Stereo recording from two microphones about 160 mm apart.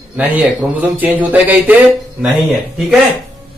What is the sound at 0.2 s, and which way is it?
A man's voice, 10° right (ahead or behind).